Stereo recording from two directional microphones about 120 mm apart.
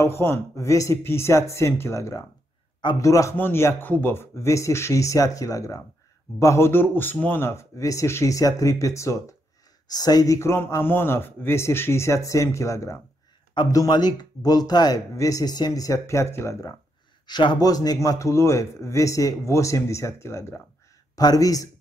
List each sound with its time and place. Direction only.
0.0 s a man's voice: 20° left (ahead or behind)
17.3 s a man's voice: 40° left (ahead or behind)